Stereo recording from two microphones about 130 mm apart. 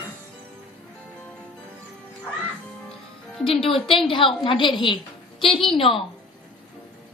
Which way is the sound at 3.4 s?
45° left (ahead or behind).